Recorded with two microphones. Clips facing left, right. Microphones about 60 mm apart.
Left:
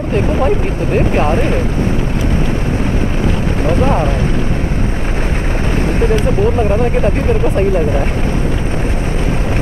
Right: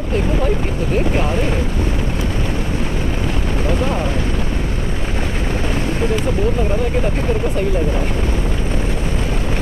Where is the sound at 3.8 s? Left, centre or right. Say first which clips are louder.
Left 6 dB; left.